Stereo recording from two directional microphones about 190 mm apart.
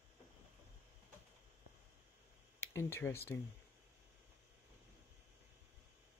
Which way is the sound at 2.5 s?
15° left (ahead or behind).